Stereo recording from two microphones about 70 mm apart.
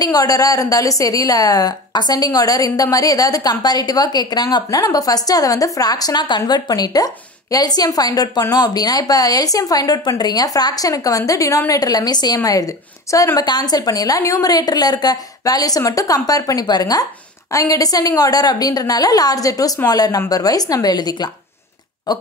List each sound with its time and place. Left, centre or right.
0.0 s a woman's voice: left
4.9 s a woman's voice: left
12.4 s a woman's voice: left
13.5 s a woman's voice: left
17.5 s a woman's voice: left